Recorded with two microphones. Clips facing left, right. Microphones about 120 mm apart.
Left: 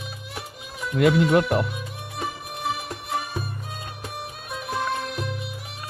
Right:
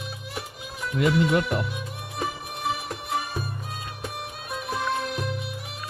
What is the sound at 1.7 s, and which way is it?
Music, centre (ahead or behind).